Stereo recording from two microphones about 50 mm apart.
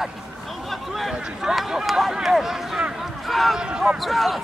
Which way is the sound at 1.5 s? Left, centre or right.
Centre.